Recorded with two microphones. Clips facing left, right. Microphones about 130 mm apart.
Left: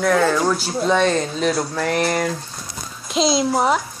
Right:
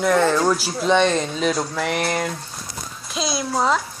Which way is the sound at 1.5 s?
10° left (ahead or behind).